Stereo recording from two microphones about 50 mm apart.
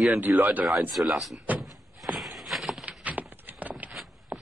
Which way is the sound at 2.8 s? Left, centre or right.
Right.